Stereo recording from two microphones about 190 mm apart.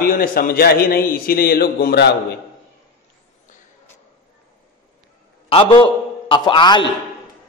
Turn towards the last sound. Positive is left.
turn(degrees=25)  # may be behind; listen again after turning